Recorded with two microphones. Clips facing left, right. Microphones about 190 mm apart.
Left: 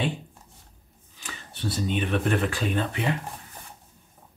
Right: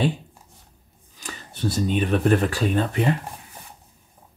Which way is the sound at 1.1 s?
40° right (ahead or behind).